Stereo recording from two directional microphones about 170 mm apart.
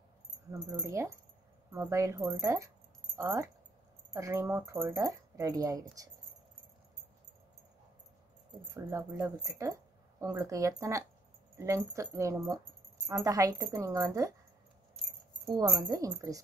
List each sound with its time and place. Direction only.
0.5 s speech: 15° right (ahead or behind)
8.7 s a woman's voice: 15° right (ahead or behind)
15.4 s a woman's voice: 20° right (ahead or behind)